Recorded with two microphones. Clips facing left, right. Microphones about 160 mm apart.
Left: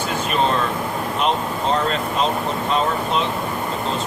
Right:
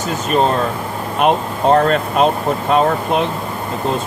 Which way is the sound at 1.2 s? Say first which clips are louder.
Right 8 dB; 55° right (ahead or behind).